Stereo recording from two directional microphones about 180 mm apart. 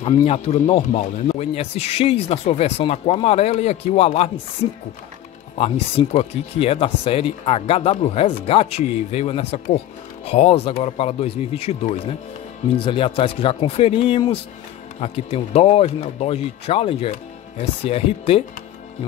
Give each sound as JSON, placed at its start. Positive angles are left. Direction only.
{"t": 0.2, "sound": "speech", "side_deg": 35}
{"t": 5.6, "sound": "speech", "side_deg": 35}